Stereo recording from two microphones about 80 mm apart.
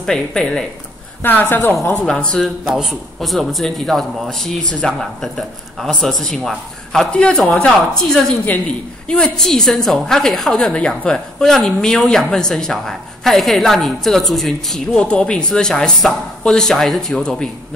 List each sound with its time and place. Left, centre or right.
0.0 s a man's voice: centre
1.2 s a woman's voice: left
2.0 s a man's voice: centre
2.4 s a woman's voice: centre
9.0 s a woman's voice: centre